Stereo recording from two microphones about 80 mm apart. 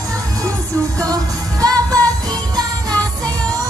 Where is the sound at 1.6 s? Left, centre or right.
Right.